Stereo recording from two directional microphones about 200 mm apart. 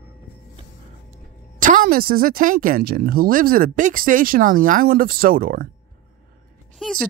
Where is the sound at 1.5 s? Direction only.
40° right (ahead or behind).